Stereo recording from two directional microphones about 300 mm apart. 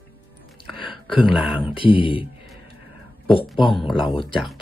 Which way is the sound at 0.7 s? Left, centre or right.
Centre.